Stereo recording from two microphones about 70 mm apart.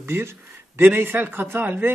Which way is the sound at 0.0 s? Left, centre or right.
Right.